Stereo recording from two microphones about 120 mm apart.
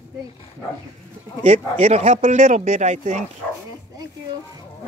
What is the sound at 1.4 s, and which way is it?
Speech, 60° right (ahead or behind).